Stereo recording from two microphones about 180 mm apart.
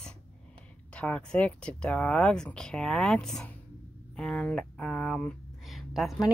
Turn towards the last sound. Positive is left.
turn(degrees=0)  # may be behind; listen again after turning